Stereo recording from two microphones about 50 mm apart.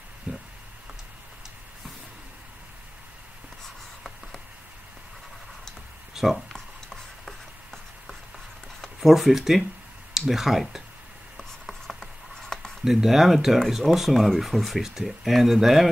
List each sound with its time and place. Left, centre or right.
0.3 s a sound: right
3.6 s writing: centre
6.3 s writing: centre
9.0 s speech: centre
11.3 s writing: centre
12.8 s speech: centre